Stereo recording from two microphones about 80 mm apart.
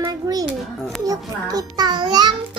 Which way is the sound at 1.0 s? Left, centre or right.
Right.